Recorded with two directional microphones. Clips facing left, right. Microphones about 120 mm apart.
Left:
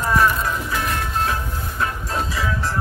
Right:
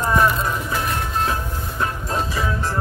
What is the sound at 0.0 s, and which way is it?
Music, 25° right (ahead or behind).